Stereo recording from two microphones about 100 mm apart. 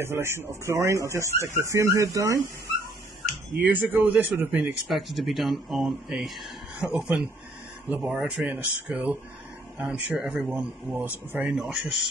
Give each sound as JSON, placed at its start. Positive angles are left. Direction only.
{"t": 0.0, "sound": "speech", "side_deg": -25}
{"t": 3.5, "sound": "speech", "side_deg": -20}
{"t": 4.8, "sound": "speech", "side_deg": 0}
{"t": 8.4, "sound": "speech", "side_deg": -15}
{"t": 10.2, "sound": "speech", "side_deg": -5}
{"t": 10.9, "sound": "speech", "side_deg": -25}
{"t": 11.3, "sound": "speech", "side_deg": -5}